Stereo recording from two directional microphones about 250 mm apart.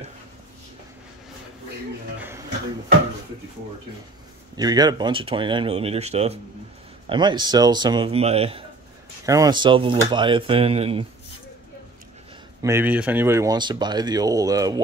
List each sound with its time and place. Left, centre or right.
4.6 s speech: centre
12.6 s speech: centre